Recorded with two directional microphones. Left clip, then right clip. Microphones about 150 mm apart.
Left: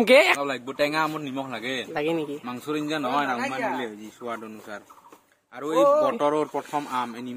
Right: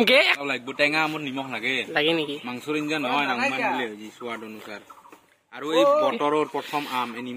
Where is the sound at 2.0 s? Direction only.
5° left (ahead or behind).